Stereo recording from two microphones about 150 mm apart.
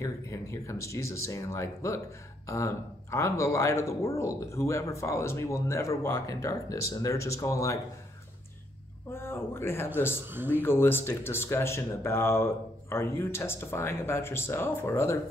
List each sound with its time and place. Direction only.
0.0 s speech: 20° left (ahead or behind)
9.1 s speech: 15° left (ahead or behind)